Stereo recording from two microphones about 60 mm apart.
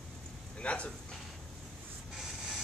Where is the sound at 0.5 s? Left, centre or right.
Centre.